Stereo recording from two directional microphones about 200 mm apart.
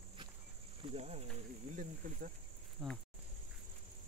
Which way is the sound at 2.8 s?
5° right (ahead or behind).